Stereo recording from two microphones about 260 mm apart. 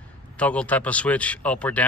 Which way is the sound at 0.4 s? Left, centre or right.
Centre.